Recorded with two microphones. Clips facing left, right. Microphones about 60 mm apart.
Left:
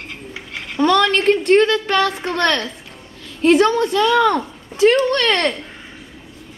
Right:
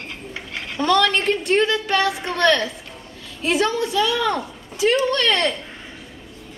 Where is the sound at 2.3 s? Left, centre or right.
Left.